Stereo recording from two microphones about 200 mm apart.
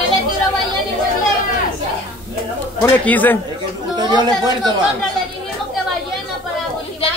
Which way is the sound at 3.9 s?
20° right (ahead or behind).